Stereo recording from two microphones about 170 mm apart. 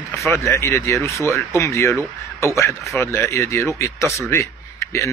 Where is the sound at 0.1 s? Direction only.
Centre (ahead or behind).